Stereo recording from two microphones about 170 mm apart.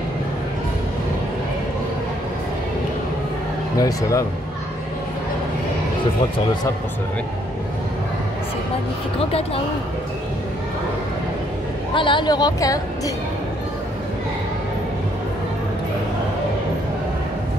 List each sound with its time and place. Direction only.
3.7 s a woman's voice: 20° left (ahead or behind)
11.9 s a woman's voice: 30° left (ahead or behind)